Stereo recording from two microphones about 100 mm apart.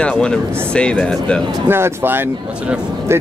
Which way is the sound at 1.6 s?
20° right (ahead or behind).